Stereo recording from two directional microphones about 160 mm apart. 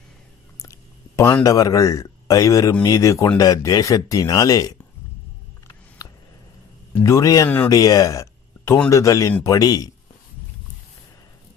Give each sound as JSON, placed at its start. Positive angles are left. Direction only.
{"t": 0.6, "sound": "speech", "side_deg": 20}
{"t": 6.0, "sound": "a sound", "side_deg": 20}
{"t": 7.0, "sound": "speech", "side_deg": 20}
{"t": 7.7, "sound": "speech", "side_deg": 25}